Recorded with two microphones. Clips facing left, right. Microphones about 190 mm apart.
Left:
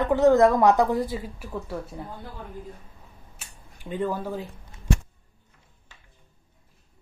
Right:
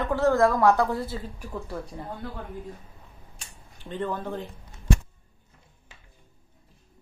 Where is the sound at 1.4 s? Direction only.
Centre (ahead or behind).